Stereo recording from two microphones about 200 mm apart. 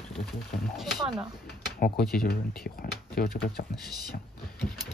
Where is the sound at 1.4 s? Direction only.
50° left (ahead or behind).